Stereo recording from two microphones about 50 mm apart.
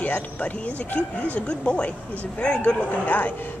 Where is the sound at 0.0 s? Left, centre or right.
Left.